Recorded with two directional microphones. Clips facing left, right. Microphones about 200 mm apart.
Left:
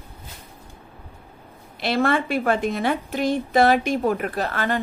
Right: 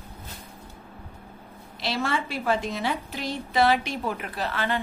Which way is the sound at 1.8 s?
55° left (ahead or behind).